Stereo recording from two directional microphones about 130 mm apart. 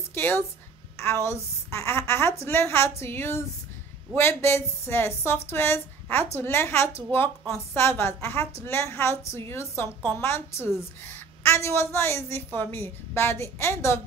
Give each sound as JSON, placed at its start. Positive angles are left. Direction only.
{"t": 0.1, "sound": "a woman's voice", "side_deg": 15}